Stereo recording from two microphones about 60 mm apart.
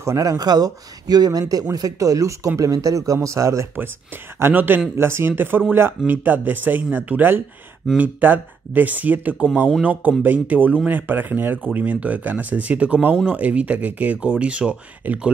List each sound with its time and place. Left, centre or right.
0.0 s speech: right
4.4 s speech: right; by 15.3 s centre